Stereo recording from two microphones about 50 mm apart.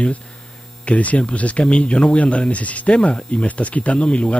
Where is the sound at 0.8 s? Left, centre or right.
Left.